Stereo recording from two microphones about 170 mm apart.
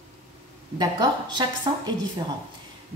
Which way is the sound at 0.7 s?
25° right (ahead or behind).